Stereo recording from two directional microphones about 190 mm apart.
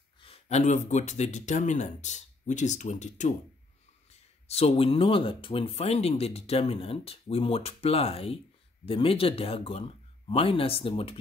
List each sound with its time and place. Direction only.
0.2 s speech: 35° left (ahead or behind)
4.5 s speech: 35° left (ahead or behind)